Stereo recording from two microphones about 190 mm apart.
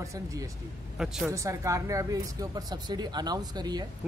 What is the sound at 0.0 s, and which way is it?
Speech, 15° right (ahead or behind).